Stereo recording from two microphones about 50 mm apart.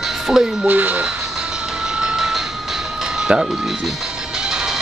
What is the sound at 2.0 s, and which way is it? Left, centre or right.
Music, centre.